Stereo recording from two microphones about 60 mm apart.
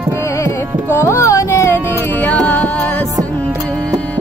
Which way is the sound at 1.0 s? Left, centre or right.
Left.